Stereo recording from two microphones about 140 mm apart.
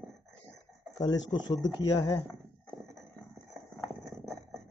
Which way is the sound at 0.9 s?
30° left (ahead or behind).